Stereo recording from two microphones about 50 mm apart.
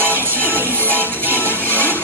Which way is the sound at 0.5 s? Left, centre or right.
Right.